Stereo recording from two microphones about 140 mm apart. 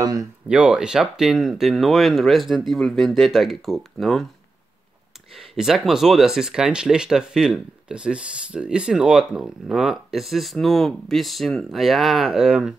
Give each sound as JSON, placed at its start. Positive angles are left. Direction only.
{"t": 0.0, "sound": "speech", "side_deg": -25}
{"t": 0.5, "sound": "speech", "side_deg": -5}
{"t": 5.3, "sound": "speech", "side_deg": 0}